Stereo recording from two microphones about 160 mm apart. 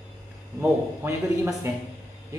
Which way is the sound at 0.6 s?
15° right (ahead or behind).